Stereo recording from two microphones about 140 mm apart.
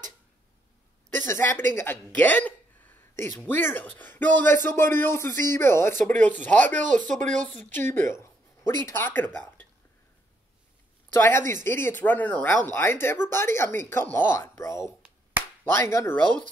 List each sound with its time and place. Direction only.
1.1 s speech: 15° left (ahead or behind)
6.8 s speech: 65° right (ahead or behind)
7.4 s a woman's voice: 15° left (ahead or behind)
11.1 s speech: 15° left (ahead or behind)
15.0 s finger snapping: 10° right (ahead or behind)
15.6 s speech: 20° left (ahead or behind)